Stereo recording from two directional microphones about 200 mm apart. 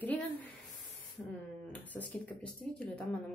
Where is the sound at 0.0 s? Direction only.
10° left (ahead or behind).